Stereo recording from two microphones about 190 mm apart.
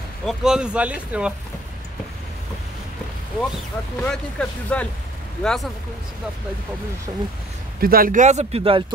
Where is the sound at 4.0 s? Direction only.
5° left (ahead or behind).